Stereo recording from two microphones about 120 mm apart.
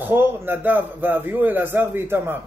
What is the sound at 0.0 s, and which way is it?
Speech, 20° right (ahead or behind).